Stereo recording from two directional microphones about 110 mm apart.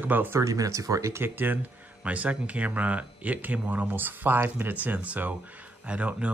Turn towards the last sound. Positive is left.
turn(degrees=-10)  # may be behind; listen again after turning